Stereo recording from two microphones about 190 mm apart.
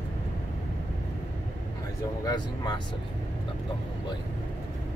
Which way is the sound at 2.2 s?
20° left (ahead or behind).